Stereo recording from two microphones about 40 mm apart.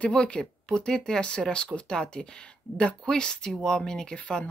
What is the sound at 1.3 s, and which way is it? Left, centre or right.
Speech, left.